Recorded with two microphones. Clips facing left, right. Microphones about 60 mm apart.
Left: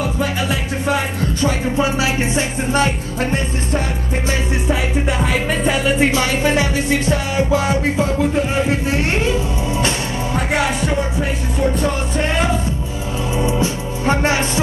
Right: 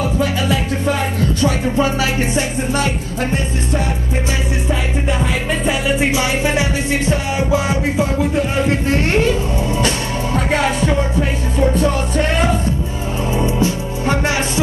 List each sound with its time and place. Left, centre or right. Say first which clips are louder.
1.4 s music: right 1 dB; left
5.2 s music: left 1 dB; centre
6.1 s music: left 1 dB; centre
8.6 s music: right 2 dB; left
13.5 s music: right 1 dB; left